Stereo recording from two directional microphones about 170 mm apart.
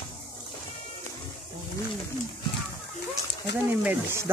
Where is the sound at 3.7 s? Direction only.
15° right (ahead or behind).